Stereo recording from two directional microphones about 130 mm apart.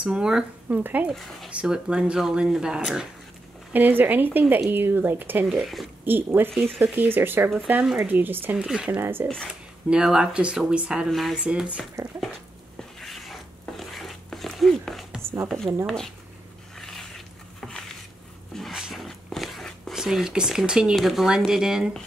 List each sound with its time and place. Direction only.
0.0 s speech: 5° right (ahead or behind)
1.1 s speech: centre (ahead or behind)
6.0 s speech: 15° right (ahead or behind)
9.0 s speech: 15° right (ahead or behind)
9.5 s speech: 5° right (ahead or behind)
12.0 s speech: 25° right (ahead or behind)
12.7 s a sound: centre (ahead or behind)
16.7 s biting: 5° left (ahead or behind)
17.6 s a sound: 5° left (ahead or behind)
18.5 s speech: centre (ahead or behind)